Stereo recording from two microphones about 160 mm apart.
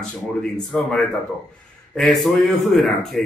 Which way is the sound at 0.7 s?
Centre (ahead or behind).